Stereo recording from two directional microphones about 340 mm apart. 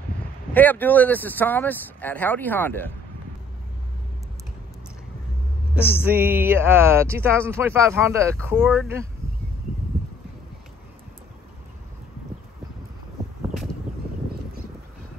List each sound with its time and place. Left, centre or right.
0.6 s speech: centre
5.8 s a sound: centre
6.1 s speech: centre